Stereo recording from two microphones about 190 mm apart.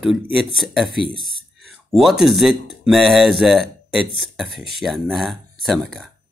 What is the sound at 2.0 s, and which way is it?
A man's voice, centre (ahead or behind).